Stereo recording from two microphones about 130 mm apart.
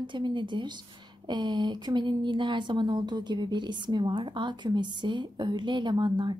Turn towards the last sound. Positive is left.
turn(degrees=-35)  # may be behind; listen again after turning